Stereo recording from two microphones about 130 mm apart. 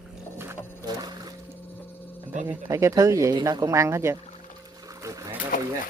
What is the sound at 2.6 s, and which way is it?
Speech, 25° right (ahead or behind).